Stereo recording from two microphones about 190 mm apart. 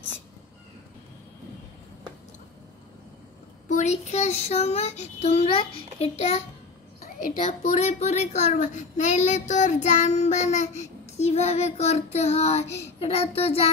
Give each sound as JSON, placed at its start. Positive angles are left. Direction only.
{"t": 3.6, "sound": "a child's voice", "side_deg": 40}